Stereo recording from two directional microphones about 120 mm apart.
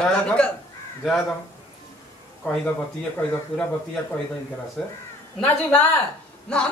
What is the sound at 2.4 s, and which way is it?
Speech, 15° left (ahead or behind).